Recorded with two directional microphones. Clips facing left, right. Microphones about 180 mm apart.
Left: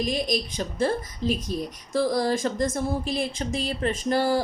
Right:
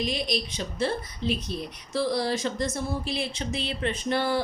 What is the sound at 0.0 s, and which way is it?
A woman's voice, 45° left (ahead or behind).